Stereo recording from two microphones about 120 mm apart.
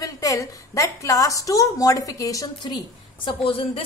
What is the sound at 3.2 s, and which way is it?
Speech, 50° left (ahead or behind).